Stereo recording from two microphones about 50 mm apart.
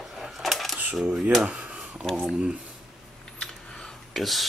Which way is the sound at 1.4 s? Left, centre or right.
Right.